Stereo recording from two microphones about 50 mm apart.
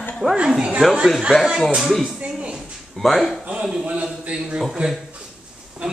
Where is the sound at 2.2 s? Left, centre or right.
Centre.